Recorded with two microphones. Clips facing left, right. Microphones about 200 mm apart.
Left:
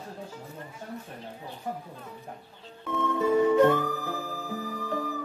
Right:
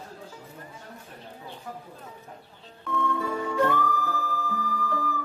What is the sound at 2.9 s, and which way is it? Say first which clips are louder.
Music: left 3 dB; 20° left (ahead or behind).